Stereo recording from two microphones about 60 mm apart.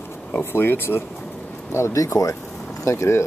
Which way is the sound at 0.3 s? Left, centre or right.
Left.